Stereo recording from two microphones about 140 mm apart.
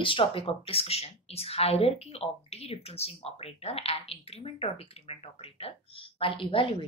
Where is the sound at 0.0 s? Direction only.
40° left (ahead or behind).